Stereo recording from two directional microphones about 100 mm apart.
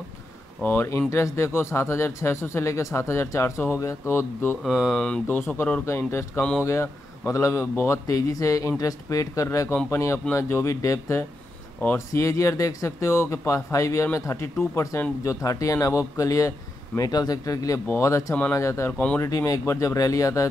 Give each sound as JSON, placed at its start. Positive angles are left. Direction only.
{"t": 0.6, "sound": "speech", "side_deg": 20}
{"t": 4.6, "sound": "speech", "side_deg": -5}
{"t": 5.3, "sound": "speech", "side_deg": 15}
{"t": 5.9, "sound": "speech", "side_deg": 25}
{"t": 18.9, "sound": "speech", "side_deg": 15}
{"t": 19.2, "sound": "speech", "side_deg": 30}